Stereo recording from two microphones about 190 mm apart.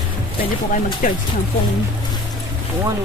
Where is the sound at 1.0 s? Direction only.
45° left (ahead or behind).